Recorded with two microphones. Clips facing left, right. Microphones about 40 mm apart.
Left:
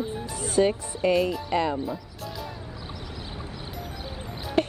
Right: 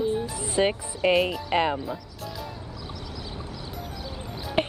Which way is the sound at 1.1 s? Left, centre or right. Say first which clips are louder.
Even; centre.